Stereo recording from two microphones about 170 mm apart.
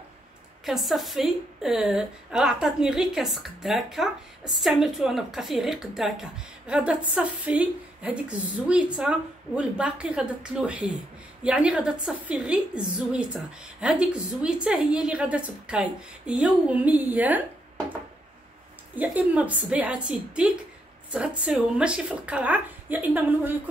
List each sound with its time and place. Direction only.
0.7 s a woman's voice: centre (ahead or behind)
18.9 s speech: 10° right (ahead or behind)